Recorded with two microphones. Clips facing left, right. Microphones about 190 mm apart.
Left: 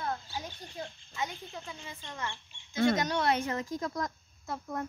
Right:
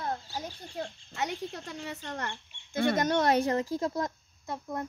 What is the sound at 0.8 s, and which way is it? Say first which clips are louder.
Speech: right 3 dB; 65° right (ahead or behind).